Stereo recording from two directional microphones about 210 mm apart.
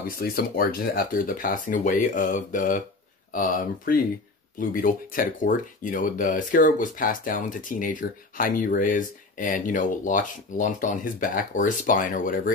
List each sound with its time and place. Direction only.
0.0 s speech: 45° left (ahead or behind)